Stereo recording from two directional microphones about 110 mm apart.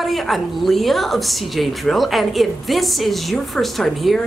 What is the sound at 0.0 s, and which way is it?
A woman's voice, centre (ahead or behind).